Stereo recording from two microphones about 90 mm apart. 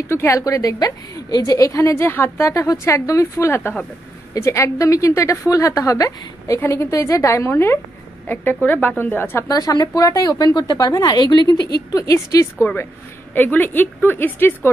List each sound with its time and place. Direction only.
0.1 s a woman's voice: 30° left (ahead or behind)
0.4 s a woman's voice: 40° left (ahead or behind); by 9.5 s 25° left (ahead or behind)
9.5 s speech: 45° left (ahead or behind)
13.3 s a woman's voice: 20° left (ahead or behind)